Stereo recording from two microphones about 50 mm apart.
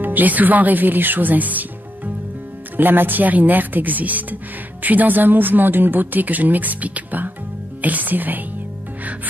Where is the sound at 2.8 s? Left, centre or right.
Right.